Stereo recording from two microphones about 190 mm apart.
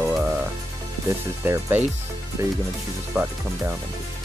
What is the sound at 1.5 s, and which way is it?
Speech, 10° right (ahead or behind).